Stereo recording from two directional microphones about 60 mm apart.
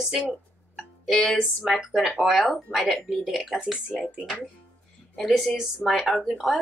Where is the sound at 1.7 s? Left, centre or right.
Centre.